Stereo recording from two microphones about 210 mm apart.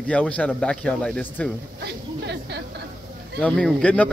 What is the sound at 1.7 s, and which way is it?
Speech, 55° right (ahead or behind).